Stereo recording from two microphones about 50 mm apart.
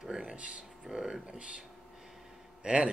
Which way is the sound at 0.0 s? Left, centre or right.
Centre.